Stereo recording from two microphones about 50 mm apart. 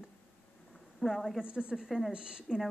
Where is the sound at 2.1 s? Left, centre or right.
Centre.